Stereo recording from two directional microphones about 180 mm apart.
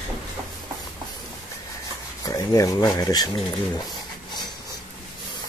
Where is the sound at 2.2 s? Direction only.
20° left (ahead or behind).